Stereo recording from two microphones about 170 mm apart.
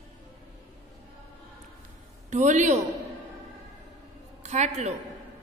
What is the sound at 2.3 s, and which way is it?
Speech, 45° right (ahead or behind).